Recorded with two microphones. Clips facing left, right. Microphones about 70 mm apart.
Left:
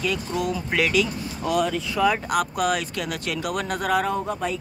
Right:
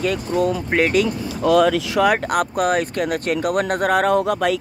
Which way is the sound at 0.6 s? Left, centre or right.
Right.